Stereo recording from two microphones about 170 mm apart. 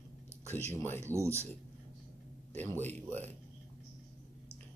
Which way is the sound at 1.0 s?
15° right (ahead or behind).